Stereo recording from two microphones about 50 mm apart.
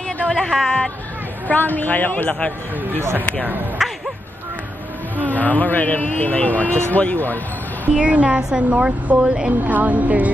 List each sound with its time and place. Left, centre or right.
0.3 s speech: centre
1.5 s a man's voice: left
3.8 s a sound: centre
5.2 s a man's voice: left
7.9 s a woman's voice: right
8.4 s speech: centre
8.6 s a woman's voice: right
9.6 s a woman's voice: right